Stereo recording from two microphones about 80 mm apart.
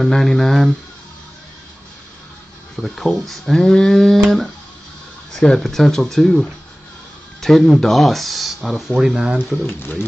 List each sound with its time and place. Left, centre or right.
0.0 s speech: centre
2.7 s speech: centre
9.7 s speech: left